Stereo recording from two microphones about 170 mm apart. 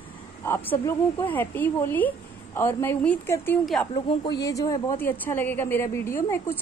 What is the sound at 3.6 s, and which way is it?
Speech, centre (ahead or behind).